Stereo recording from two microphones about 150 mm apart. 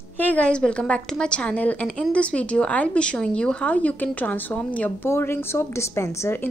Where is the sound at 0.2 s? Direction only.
10° left (ahead or behind).